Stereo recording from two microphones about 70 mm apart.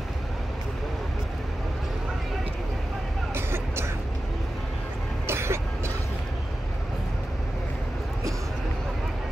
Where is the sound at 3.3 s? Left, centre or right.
Right.